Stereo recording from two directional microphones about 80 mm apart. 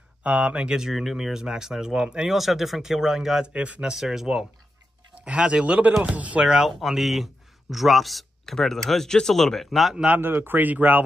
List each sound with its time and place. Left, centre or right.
0.2 s speech: centre
10.0 s a man's voice: right